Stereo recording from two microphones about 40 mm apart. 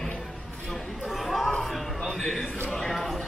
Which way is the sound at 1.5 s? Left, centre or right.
Centre.